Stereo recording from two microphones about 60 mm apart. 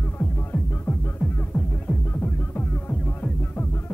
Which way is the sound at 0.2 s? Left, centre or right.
Left.